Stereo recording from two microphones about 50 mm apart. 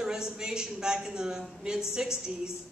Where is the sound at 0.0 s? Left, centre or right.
Centre.